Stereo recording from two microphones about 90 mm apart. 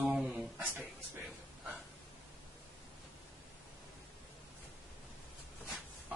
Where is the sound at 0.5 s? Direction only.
20° right (ahead or behind).